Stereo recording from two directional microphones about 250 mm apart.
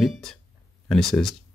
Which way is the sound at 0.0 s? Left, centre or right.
Centre.